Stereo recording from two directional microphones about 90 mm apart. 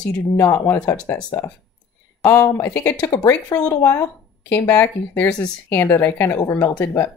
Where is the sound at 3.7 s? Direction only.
35° left (ahead or behind).